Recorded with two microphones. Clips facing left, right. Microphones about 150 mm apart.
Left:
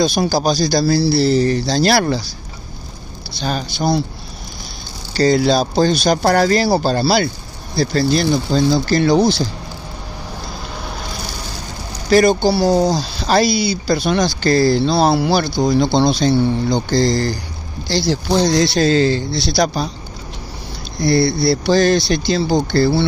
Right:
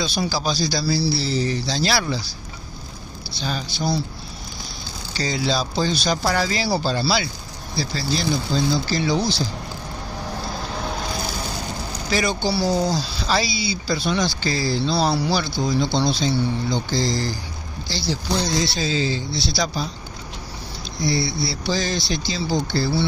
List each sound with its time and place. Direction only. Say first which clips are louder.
0.0 s speech: left 8 dB; 50° left (ahead or behind)
3.4 s speech: left 6 dB; 60° left (ahead or behind)
5.1 s speech: left 10 dB; 55° left (ahead or behind)
12.1 s speech: left 10 dB; 50° left (ahead or behind)
13.7 s speech: left 6 dB; 65° left (ahead or behind)
14.2 s speech: left 9 dB; 55° left (ahead or behind)
16.2 s speech: left 7 dB; 60° left (ahead or behind)
21.0 s speech: left 8 dB; 60° left (ahead or behind)